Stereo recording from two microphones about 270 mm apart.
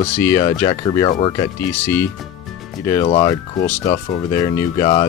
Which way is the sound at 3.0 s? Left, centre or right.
Centre.